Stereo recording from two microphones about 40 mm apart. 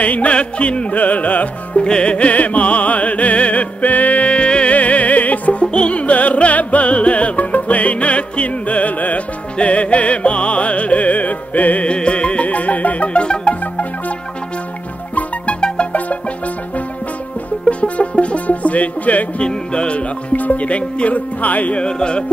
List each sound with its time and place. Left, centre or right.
0.0 s music: left
4.7 s music: left
5.7 s music: left
11.9 s music: left
17.6 s music: left
19.4 s music: left
20.3 s music: left
21.7 s music: left